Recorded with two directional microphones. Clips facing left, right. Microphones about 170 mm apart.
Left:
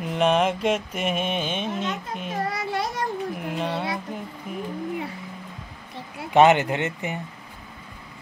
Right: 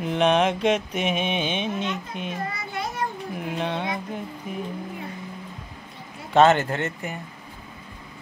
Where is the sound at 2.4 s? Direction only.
80° left.